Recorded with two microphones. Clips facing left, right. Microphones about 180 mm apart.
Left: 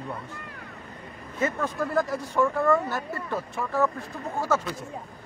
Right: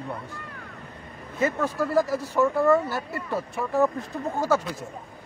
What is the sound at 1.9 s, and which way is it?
Speech, 5° right (ahead or behind).